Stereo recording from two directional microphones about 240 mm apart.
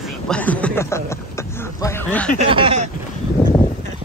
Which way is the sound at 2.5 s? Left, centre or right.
Right.